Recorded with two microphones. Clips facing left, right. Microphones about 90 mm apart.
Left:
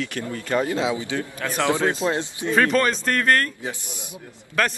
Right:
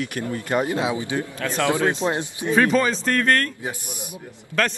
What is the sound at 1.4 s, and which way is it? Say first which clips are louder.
Speech: even; 20° left (ahead or behind).